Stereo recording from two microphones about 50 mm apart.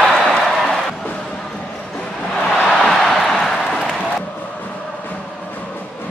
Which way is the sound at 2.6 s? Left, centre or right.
Centre.